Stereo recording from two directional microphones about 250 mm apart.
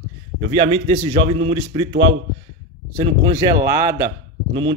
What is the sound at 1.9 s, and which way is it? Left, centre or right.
Speech, right.